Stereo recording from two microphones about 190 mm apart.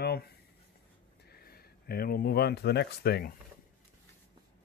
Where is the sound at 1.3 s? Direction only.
55° left (ahead or behind).